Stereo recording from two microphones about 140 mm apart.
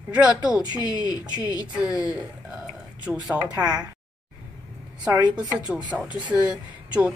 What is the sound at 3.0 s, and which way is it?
Speech, 10° right (ahead or behind).